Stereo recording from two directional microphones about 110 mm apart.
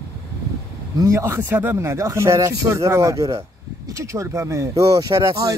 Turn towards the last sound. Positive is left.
turn(degrees=-30)  # may be behind; listen again after turning